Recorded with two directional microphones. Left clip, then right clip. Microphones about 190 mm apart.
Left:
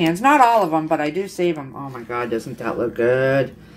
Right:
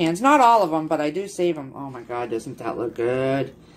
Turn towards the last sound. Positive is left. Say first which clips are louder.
# left 5 dB
turn(degrees=-10)  # may be behind; listen again after turning